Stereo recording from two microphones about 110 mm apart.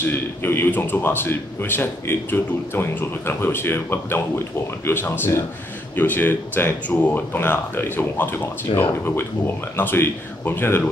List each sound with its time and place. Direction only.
0.0 s a man's voice: 20° left (ahead or behind)